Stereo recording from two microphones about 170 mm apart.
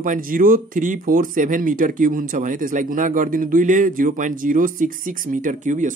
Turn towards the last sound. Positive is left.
turn(degrees=-45)  # may be behind; listen again after turning